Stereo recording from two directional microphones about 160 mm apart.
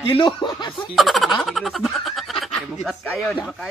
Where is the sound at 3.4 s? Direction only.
Centre (ahead or behind).